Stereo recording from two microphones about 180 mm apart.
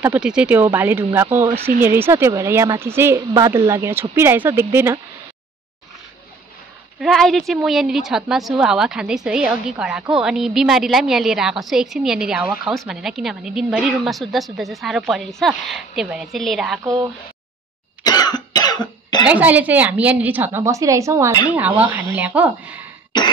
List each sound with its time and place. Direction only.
0.0 s speech: 5° right (ahead or behind)
7.0 s a woman's voice: centre (ahead or behind)
18.0 s cough: 20° left (ahead or behind)
19.2 s speech: 10° right (ahead or behind)